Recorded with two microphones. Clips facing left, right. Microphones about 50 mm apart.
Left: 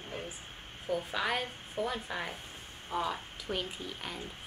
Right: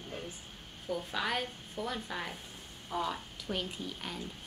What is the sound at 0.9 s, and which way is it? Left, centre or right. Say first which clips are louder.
A woman's voice: left 2 dB; centre.